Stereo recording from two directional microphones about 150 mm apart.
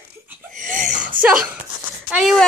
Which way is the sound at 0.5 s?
60° right (ahead or behind).